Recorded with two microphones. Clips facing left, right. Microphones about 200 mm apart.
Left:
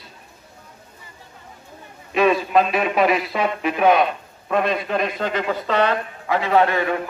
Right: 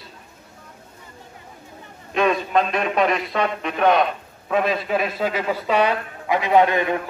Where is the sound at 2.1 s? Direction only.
5° left (ahead or behind).